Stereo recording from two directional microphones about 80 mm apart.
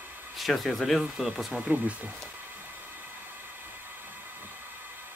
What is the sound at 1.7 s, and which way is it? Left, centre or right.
Speech, centre.